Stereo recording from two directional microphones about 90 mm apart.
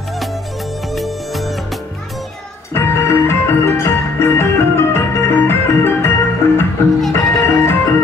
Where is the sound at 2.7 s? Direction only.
30° left (ahead or behind).